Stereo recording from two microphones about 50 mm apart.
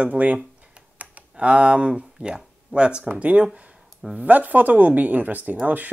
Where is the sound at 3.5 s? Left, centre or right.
Right.